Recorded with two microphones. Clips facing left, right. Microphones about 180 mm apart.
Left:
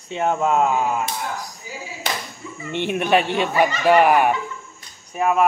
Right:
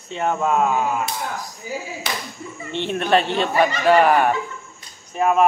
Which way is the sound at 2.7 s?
15° left (ahead or behind).